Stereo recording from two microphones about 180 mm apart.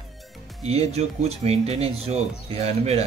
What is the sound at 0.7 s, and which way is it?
Speech, 35° right (ahead or behind).